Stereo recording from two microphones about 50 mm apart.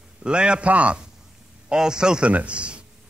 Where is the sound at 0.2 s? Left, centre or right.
Centre.